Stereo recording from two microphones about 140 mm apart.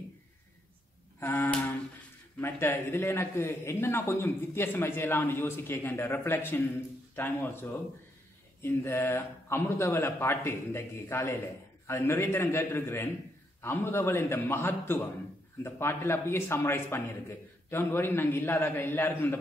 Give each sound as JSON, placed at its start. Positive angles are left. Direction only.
{"t": 1.2, "sound": "a sound", "side_deg": 15}
{"t": 2.4, "sound": "a man's voice", "side_deg": 15}
{"t": 8.6, "sound": "a man's voice", "side_deg": 20}